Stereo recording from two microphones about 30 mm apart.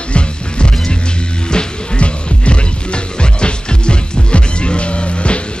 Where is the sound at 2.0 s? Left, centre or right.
Left.